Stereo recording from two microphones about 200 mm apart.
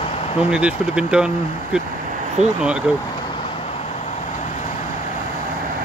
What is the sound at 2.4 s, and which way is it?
Speech, 35° right (ahead or behind).